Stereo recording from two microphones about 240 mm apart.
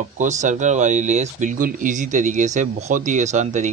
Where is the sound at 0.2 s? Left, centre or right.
Right.